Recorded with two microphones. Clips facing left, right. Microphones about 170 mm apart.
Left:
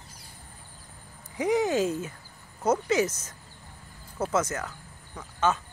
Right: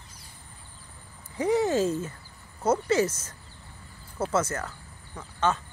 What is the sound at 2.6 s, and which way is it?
Speech, 15° left (ahead or behind).